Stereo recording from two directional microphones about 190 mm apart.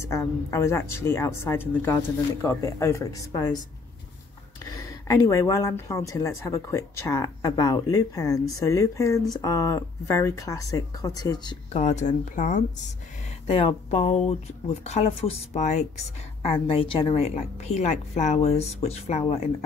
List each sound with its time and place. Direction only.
0.0 s speech: 15° left (ahead or behind)
4.7 s speech: 15° left (ahead or behind)
11.7 s a woman's voice: 35° left (ahead or behind)
13.5 s a woman's voice: 30° left (ahead or behind)